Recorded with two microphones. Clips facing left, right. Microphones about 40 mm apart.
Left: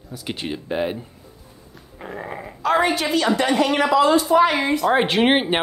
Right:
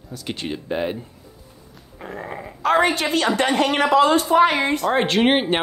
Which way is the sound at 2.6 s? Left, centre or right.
Right.